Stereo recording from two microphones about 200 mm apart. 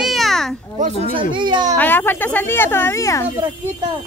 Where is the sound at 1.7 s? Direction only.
10° left (ahead or behind).